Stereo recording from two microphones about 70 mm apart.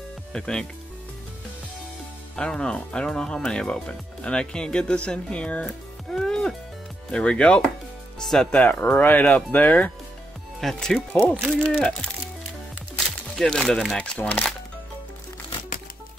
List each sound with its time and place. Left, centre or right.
0.3 s speech: centre
2.3 s speech: centre
6.0 s music: centre
7.1 s speech: centre
8.5 s speech: centre
10.6 s speech: centre
11.1 s speech: centre